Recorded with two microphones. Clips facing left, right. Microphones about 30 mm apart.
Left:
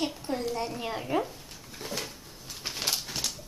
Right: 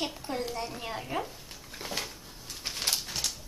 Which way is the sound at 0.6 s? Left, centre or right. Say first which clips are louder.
Left 3 dB; centre.